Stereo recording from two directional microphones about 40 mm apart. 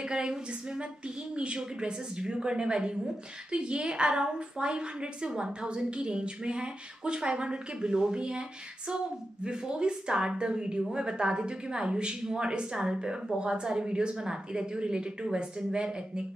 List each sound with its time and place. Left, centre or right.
0.0 s a woman's voice: centre